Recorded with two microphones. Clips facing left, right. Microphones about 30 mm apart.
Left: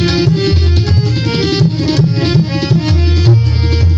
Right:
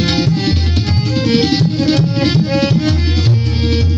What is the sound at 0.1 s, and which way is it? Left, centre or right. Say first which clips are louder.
Music: left 3 dB; centre.